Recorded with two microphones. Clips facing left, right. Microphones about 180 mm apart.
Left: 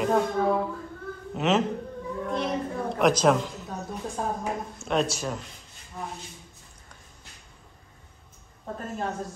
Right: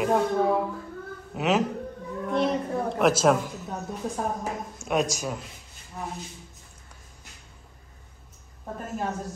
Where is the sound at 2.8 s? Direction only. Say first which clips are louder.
Even; centre (ahead or behind).